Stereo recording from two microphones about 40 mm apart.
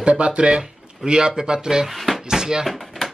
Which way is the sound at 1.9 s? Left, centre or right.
Centre.